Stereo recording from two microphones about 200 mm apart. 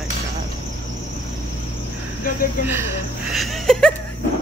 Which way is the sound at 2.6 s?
10° right (ahead or behind).